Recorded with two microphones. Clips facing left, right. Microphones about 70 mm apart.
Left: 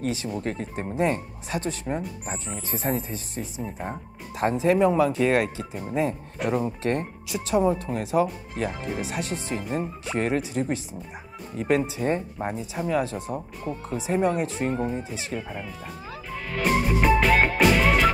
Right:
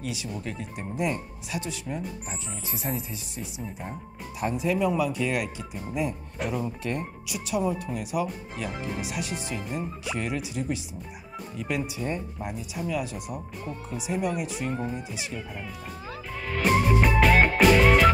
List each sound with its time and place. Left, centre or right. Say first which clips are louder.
0.0 s speech: left 6 dB; left
13.7 s speech: left 6 dB; centre
14.0 s speech: left 5 dB; left
14.7 s speech: left 4 dB; centre
15.3 s music: left 4 dB; centre